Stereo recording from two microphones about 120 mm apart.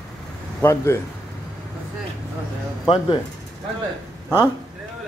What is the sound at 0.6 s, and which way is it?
Speech, 25° left (ahead or behind).